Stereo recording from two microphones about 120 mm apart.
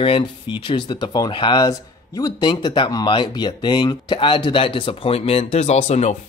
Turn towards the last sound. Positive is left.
turn(degrees=65)  # may be behind; listen again after turning